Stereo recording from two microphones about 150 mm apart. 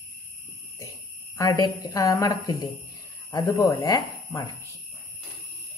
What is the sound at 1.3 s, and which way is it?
A woman's voice, 20° left (ahead or behind).